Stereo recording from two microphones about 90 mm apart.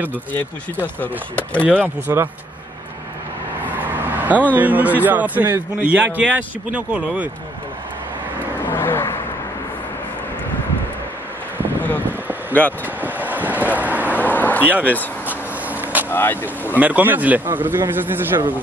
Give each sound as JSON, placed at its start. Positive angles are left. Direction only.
{"t": 0.3, "sound": "speech", "side_deg": 20}
{"t": 2.1, "sound": "speech", "side_deg": -35}
{"t": 3.6, "sound": "vehicle", "side_deg": -20}
{"t": 4.6, "sound": "a man's voice", "side_deg": -20}
{"t": 8.6, "sound": "vehicle", "side_deg": 25}
{"t": 12.1, "sound": "a sound", "side_deg": -20}
{"t": 12.8, "sound": "vehicle", "side_deg": -20}
{"t": 14.1, "sound": "a sound", "side_deg": 20}
{"t": 14.6, "sound": "a man's voice", "side_deg": -20}
{"t": 15.2, "sound": "vehicle", "side_deg": -20}
{"t": 16.1, "sound": "speech", "side_deg": 25}
{"t": 16.8, "sound": "a man's voice", "side_deg": -20}